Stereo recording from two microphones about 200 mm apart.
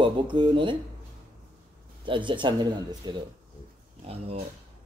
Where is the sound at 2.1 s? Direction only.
25° right (ahead or behind).